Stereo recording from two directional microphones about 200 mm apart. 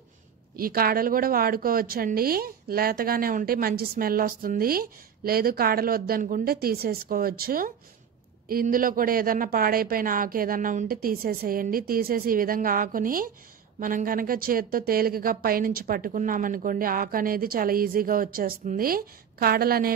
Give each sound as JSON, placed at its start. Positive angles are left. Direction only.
{"t": 0.6, "sound": "speech", "side_deg": -45}